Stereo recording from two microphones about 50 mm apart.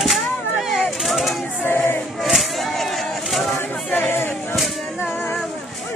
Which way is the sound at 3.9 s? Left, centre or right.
Left.